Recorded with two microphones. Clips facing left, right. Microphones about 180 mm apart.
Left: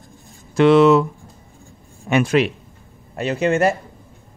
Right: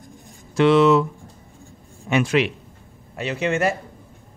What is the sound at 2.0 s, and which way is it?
A man's voice, 50° left (ahead or behind).